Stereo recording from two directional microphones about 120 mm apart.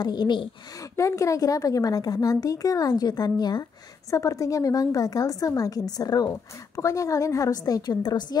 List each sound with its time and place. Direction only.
0.0 s a woman's voice: 35° left (ahead or behind)
0.9 s a woman's voice: 25° left (ahead or behind)